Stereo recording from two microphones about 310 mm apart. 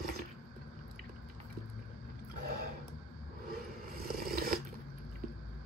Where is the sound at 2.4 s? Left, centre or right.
Right.